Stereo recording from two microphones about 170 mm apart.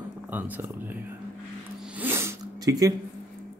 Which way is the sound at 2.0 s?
15° right (ahead or behind).